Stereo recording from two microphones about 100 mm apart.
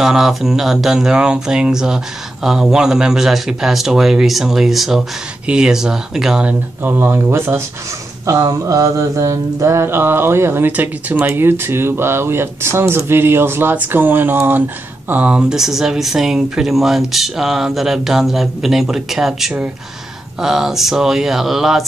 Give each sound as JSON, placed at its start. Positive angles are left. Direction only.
{"t": 0.0, "sound": "speech", "side_deg": -5}
{"t": 6.8, "sound": "mantra", "side_deg": -20}
{"t": 8.3, "sound": "mantra", "side_deg": -35}
{"t": 15.0, "sound": "speech", "side_deg": -15}